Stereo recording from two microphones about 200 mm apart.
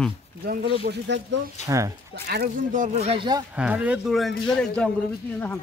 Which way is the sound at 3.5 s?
5° right (ahead or behind).